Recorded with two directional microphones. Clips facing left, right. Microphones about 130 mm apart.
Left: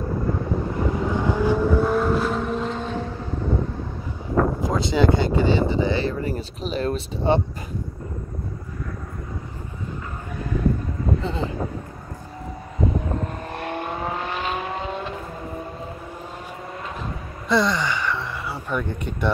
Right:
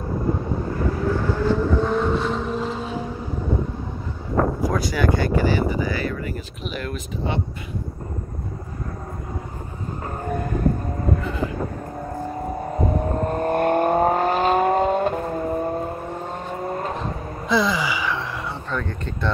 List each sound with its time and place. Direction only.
1.1 s vehicle: 15° left (ahead or behind); by 3.1 s 5° right (ahead or behind)
4.6 s speech: 20° left (ahead or behind)
10.0 s vehicle: 50° right (ahead or behind)
11.2 s speech: 25° left (ahead or behind)
12.7 s vehicle: 45° right (ahead or behind)
17.5 s gasp: centre (ahead or behind)
18.7 s speech: 10° left (ahead or behind)